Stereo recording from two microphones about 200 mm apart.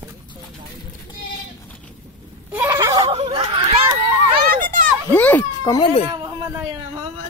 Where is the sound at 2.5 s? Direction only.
15° right (ahead or behind).